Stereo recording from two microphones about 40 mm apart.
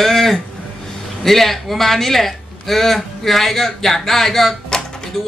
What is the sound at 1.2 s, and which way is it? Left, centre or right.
A man's voice, centre.